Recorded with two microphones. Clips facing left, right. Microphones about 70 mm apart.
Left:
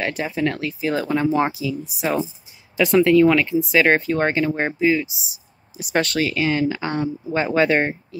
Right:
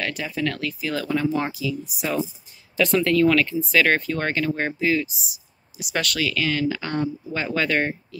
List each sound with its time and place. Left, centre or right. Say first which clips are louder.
0.0 s speech: left 4 dB; left
2.8 s speech: left 5 dB; centre
4.7 s speech: left 5 dB; centre
5.8 s speech: left 5 dB; left